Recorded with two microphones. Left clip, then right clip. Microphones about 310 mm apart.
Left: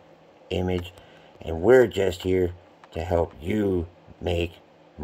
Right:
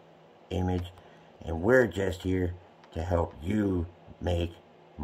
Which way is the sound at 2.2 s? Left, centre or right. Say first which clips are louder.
Left 8 dB; centre.